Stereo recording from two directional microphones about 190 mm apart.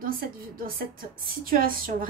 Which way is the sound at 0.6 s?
50° right (ahead or behind).